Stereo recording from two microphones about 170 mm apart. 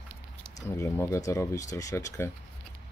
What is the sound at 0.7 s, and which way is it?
Speech, 15° left (ahead or behind).